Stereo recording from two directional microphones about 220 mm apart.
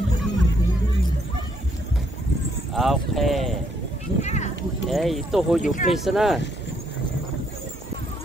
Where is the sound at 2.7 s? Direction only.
Centre (ahead or behind).